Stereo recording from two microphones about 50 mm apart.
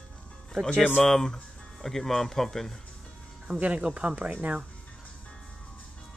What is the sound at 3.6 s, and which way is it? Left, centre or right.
Speech, right.